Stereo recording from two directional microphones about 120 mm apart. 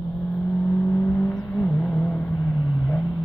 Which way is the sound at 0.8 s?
20° left (ahead or behind).